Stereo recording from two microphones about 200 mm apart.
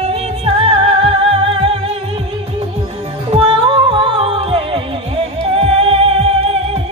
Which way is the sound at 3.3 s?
30° right (ahead or behind).